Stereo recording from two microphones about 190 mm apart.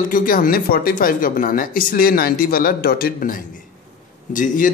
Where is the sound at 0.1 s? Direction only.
45° left (ahead or behind).